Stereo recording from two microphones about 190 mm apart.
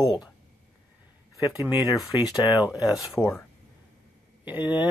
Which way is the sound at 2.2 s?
5° right (ahead or behind).